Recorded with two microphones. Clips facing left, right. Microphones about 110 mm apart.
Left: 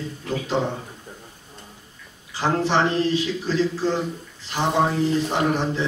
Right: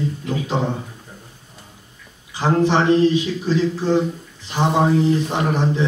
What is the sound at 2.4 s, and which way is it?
Speech, 15° right (ahead or behind).